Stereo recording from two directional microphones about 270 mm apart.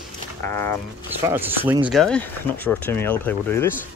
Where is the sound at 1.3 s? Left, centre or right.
Centre.